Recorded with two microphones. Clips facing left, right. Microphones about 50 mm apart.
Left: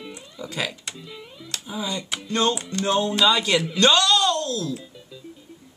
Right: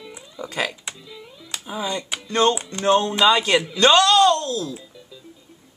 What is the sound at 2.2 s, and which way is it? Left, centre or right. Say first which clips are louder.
Speech: right 4 dB; right.